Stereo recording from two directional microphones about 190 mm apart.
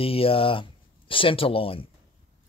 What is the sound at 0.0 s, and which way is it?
Speech, 30° left (ahead or behind).